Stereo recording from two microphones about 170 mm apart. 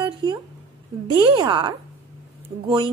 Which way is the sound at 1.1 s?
25° right (ahead or behind).